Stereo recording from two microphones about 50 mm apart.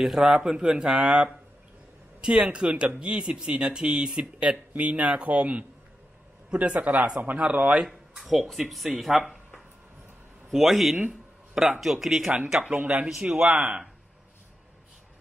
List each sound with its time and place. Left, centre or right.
0.0 s speech: centre
0.3 s speech: centre
7.8 s speech: centre
10.5 s speech: centre
11.1 s a sound: centre
11.8 s speech: centre
12.7 s speech: right
13.5 s speech: right